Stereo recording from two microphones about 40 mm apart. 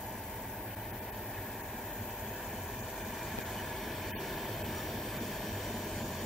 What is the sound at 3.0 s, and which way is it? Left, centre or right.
Train, centre.